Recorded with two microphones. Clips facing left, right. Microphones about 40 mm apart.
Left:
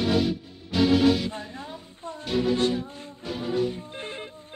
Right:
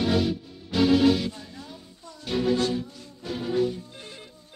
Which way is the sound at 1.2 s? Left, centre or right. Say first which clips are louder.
Left 2 dB; left.